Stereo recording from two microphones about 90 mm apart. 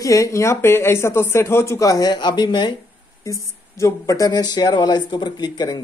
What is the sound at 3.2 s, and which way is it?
Speech, 35° left (ahead or behind).